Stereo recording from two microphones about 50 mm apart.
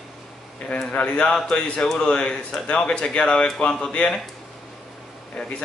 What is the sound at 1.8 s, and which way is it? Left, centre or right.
Speech, centre.